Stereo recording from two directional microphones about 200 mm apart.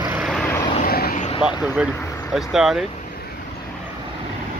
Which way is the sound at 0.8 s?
45° left (ahead or behind).